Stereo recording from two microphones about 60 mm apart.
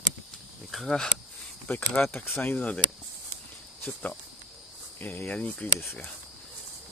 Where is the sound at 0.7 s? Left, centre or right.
Centre.